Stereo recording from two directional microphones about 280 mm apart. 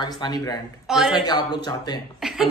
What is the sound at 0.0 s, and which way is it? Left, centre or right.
Speech, centre.